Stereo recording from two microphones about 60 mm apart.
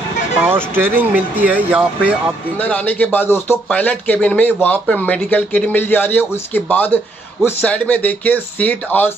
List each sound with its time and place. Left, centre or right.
0.5 s speech: right; by 2.1 s centre
2.6 s a man's voice: left
3.7 s a man's voice: left
7.6 s speech: centre